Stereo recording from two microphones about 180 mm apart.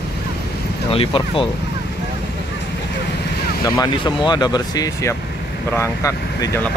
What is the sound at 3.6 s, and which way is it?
Speech, 25° left (ahead or behind).